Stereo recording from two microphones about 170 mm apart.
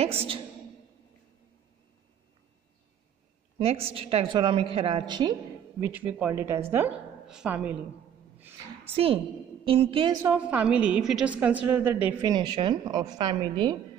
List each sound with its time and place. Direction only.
3.5 s a woman's voice: 35° right (ahead or behind)
5.8 s a woman's voice: 10° right (ahead or behind)
8.4 s a sound: 10° right (ahead or behind)
8.9 s a woman's voice: 35° right (ahead or behind)
10.2 s a woman's voice: 10° right (ahead or behind)
12.2 s a woman's voice: 25° right (ahead or behind)